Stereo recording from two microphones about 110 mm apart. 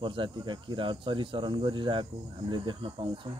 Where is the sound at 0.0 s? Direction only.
50° right (ahead or behind).